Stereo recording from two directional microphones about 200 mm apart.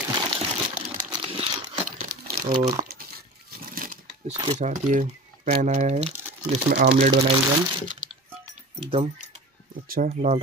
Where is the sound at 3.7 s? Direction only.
45° right (ahead or behind).